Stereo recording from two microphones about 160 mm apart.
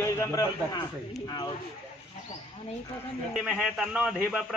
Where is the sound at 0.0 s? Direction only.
20° left (ahead or behind).